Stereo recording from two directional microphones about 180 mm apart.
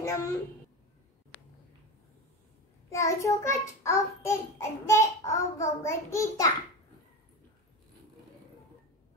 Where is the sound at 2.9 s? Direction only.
15° left (ahead or behind).